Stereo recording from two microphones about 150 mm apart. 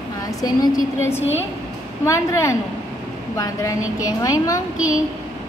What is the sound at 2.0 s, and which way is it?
A woman's voice, 20° left (ahead or behind).